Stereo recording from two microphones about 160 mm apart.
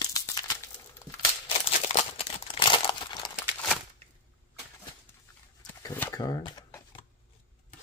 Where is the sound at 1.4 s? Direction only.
35° left (ahead or behind).